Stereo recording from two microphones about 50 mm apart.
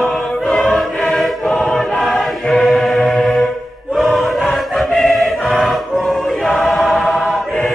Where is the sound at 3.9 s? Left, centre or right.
Centre.